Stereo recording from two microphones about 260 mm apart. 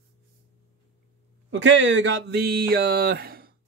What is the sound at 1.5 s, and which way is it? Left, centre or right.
Speech, right.